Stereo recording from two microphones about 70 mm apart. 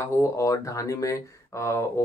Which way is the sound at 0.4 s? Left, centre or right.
Left.